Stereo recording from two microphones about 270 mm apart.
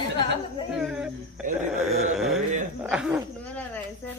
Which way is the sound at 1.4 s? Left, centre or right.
Centre.